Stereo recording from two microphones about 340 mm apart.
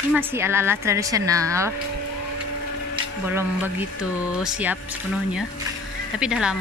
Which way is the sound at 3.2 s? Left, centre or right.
Centre.